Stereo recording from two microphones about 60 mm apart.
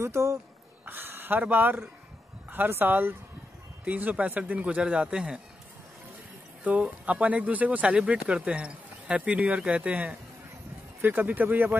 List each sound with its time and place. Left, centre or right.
0.0 s speech: right
0.8 s speech: right; by 5.4 s centre
6.6 s speech: right